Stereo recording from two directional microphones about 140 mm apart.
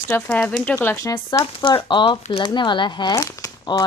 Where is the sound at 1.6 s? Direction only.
35° left (ahead or behind).